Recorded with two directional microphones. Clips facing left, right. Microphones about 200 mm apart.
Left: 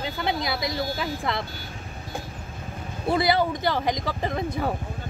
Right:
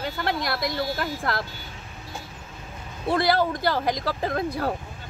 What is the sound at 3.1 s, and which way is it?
Speech, centre (ahead or behind).